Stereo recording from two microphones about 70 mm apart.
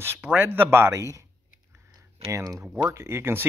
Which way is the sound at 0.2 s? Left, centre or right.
Right.